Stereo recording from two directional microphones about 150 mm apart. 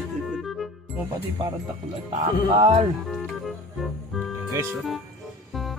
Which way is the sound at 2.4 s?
40° right (ahead or behind).